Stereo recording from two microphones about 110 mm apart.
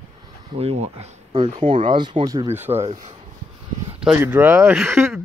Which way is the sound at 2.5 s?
20° right (ahead or behind).